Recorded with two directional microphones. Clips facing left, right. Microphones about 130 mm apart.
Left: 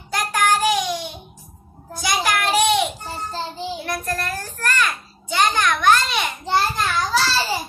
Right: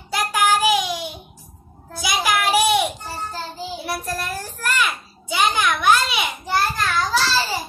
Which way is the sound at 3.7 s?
5° right (ahead or behind).